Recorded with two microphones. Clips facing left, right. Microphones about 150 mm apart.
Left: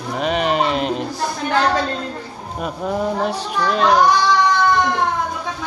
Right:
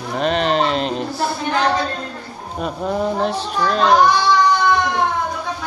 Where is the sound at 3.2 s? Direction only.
10° left (ahead or behind).